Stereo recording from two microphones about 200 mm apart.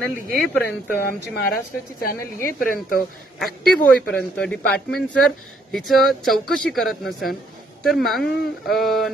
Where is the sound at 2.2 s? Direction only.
15° left (ahead or behind).